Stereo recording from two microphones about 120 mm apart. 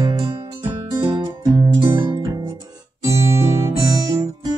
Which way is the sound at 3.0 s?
25° right (ahead or behind).